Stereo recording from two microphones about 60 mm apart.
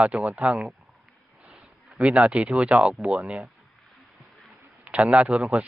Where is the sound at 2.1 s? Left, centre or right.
Right; by 3.5 s centre.